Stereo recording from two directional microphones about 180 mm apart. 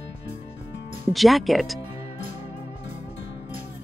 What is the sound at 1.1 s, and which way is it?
Speech, centre (ahead or behind).